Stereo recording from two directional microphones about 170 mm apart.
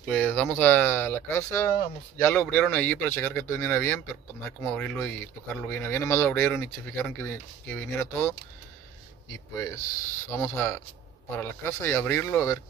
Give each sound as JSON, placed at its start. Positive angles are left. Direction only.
{"t": 0.0, "sound": "speech", "side_deg": 10}
{"t": 2.4, "sound": "speech", "side_deg": 5}
{"t": 10.3, "sound": "speech", "side_deg": 15}